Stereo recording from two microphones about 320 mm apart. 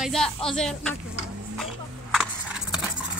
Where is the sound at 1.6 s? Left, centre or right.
Centre.